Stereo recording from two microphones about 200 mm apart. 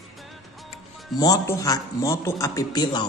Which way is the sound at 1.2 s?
15° left (ahead or behind).